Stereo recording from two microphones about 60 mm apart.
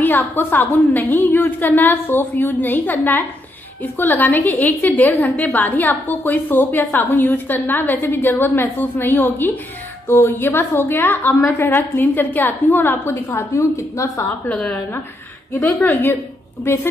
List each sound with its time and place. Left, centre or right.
0.0 s a woman's voice: left
13.1 s a woman's voice: left
14.5 s a woman's voice: centre
15.6 s a woman's voice: left